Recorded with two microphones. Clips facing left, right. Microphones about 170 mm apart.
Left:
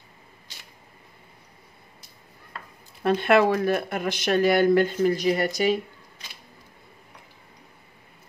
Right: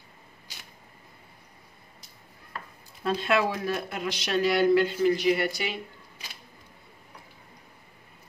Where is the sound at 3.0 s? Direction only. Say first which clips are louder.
Left 6 dB; 60° left (ahead or behind); by 5.8 s 45° left (ahead or behind).